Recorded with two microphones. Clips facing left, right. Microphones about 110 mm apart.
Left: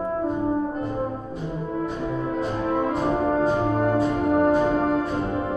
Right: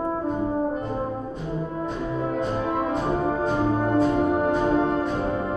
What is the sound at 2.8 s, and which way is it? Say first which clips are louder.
Music: left 4 dB; centre (ahead or behind).